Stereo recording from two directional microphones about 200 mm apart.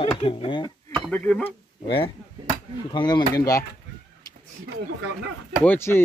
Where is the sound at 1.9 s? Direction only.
25° left (ahead or behind).